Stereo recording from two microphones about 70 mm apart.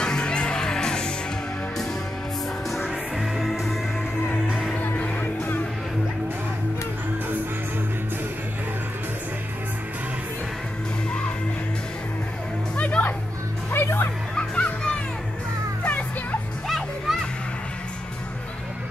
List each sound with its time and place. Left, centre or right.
0.0 s music: centre
2.7 s music: centre
4.7 s music: left
12.7 s music: centre
13.7 s music: left
14.3 s music: centre
16.6 s music: centre